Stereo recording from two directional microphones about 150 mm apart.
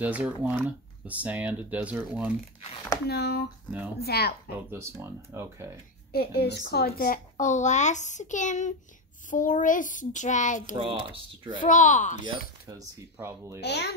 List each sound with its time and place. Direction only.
0.0 s speech: 10° right (ahead or behind)
3.1 s speech: 90° left
4.6 s speech: 15° right (ahead or behind)
6.1 s a child's voice: 90° left; by 10.8 s 55° left (ahead or behind)
10.8 s speech: 35° right (ahead or behind)
11.6 s a child's voice: 55° left (ahead or behind)
12.6 s speech: 20° right (ahead or behind)
13.6 s speech: 90° left